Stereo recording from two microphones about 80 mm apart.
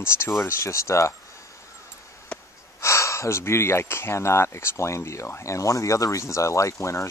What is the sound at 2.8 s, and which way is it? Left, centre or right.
Speech, left.